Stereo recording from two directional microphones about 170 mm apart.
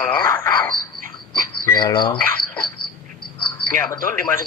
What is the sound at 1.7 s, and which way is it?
Speech, 25° left (ahead or behind).